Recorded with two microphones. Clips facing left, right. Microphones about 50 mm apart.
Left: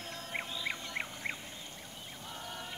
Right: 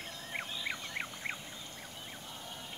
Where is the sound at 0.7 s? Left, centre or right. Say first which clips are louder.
Left 1 dB; centre.